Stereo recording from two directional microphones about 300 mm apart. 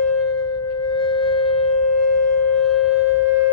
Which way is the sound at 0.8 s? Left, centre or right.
Centre.